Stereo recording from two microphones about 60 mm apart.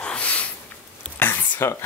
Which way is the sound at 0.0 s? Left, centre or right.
Left.